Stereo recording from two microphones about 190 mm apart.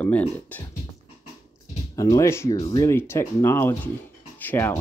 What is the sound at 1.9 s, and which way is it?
Speech, 15° left (ahead or behind).